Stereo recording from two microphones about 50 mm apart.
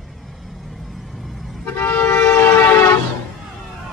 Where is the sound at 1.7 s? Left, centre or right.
Left.